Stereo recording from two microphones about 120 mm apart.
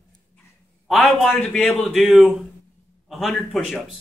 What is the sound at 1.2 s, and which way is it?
Speech, 5° left (ahead or behind).